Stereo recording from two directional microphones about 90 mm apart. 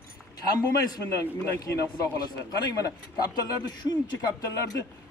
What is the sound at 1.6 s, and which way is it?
A man's voice, 40° left (ahead or behind).